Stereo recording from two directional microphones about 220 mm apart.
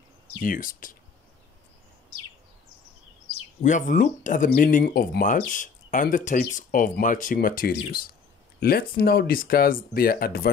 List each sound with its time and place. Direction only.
0.4 s speech: 35° left (ahead or behind)
3.6 s speech: 35° left (ahead or behind)